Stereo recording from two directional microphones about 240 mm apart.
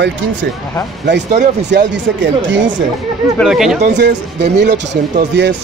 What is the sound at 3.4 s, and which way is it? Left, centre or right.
Speech, centre.